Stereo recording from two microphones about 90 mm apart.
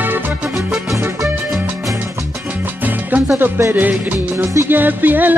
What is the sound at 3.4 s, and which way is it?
Music, 25° right (ahead or behind).